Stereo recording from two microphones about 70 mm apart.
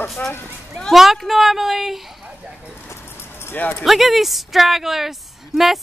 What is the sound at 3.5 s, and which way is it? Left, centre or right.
Speech, left.